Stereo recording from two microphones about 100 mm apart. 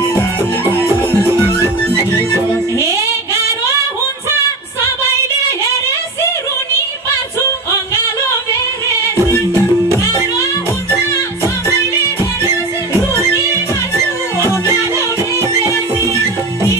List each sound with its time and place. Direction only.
0.1 s music: 20° left (ahead or behind)
0.8 s music: 25° right (ahead or behind)
1.8 s music: 15° left (ahead or behind)
14.7 s music: 30° right (ahead or behind)